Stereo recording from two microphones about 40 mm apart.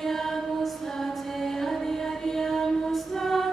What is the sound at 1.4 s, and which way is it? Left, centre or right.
Music, centre.